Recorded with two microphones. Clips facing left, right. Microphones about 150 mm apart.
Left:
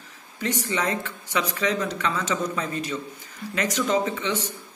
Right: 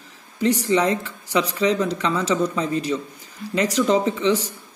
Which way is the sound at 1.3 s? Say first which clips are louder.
Right 5 dB; 35° right (ahead or behind).